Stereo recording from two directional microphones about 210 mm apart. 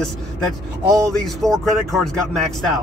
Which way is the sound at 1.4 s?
Centre (ahead or behind).